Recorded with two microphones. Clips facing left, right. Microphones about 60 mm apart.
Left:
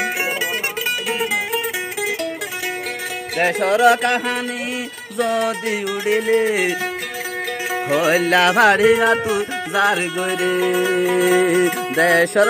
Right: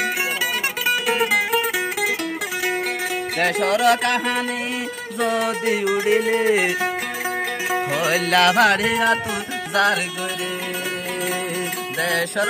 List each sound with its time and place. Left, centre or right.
1.0 s music: centre
3.3 s music: centre
5.1 s music: centre
7.7 s music: centre
10.4 s music: left
12.0 s music: left